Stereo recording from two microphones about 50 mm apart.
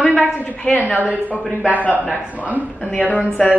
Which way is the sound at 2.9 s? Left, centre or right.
Left.